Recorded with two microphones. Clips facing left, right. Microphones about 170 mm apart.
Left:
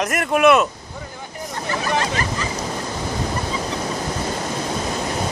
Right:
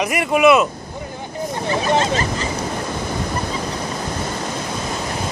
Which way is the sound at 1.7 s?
25° right (ahead or behind).